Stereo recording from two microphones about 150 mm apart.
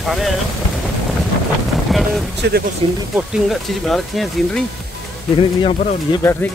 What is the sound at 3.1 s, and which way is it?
Speech, centre (ahead or behind).